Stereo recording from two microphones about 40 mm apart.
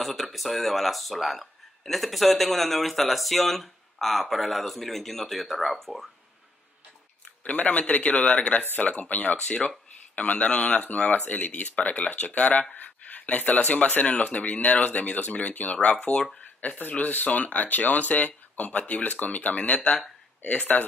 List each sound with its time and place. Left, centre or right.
0.0 s speech: centre
7.4 s speech: left
16.0 s speech: left
16.6 s speech: left